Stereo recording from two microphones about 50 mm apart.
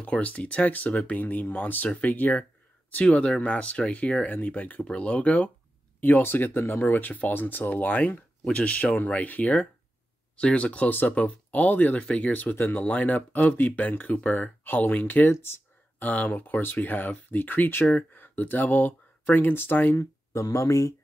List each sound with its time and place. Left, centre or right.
0.0 s speech: left
5.9 s speech: left
6.8 s speech: left
10.9 s speech: left
20.0 s speech: left